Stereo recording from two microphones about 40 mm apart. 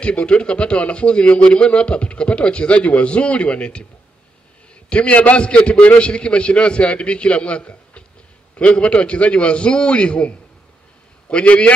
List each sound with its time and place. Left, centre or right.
0.0 s a man's voice: left
4.8 s a man's voice: left